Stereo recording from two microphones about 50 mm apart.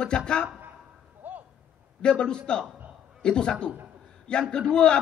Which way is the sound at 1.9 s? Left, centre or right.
Centre.